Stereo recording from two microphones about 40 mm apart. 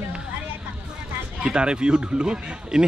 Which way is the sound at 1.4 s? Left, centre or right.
Right.